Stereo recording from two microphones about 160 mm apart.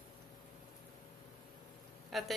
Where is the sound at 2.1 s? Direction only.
Centre (ahead or behind).